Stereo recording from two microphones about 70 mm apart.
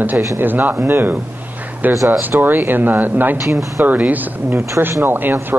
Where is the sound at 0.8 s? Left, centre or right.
Right.